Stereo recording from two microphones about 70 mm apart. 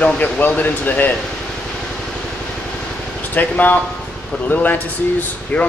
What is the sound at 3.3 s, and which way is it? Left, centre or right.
Speech, left.